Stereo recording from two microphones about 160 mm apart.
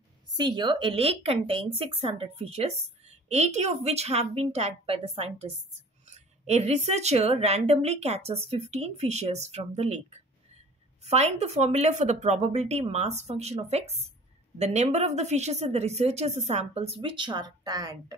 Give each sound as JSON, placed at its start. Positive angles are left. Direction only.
{"t": 0.4, "sound": "a woman's voice", "side_deg": -30}
{"t": 11.1, "sound": "speech", "side_deg": -45}